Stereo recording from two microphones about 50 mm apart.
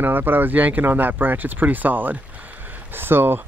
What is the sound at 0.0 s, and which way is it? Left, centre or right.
Speech, right.